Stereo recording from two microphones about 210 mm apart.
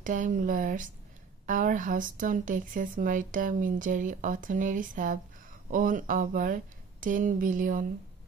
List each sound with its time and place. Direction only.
0.0 s speech: 40° right (ahead or behind)